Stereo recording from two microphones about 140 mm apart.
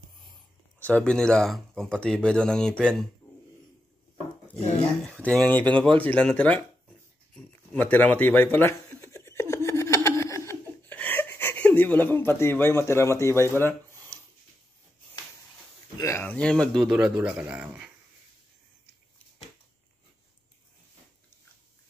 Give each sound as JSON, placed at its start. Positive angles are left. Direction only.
{"t": 0.7, "sound": "speech", "side_deg": 10}
{"t": 4.6, "sound": "speech", "side_deg": 50}
{"t": 5.2, "sound": "speech", "side_deg": 5}
{"t": 7.3, "sound": "a sound", "side_deg": 10}
{"t": 16.0, "sound": "speech", "side_deg": 20}
{"t": 16.3, "sound": "speech", "side_deg": 5}
{"t": 16.8, "sound": "speech", "side_deg": -5}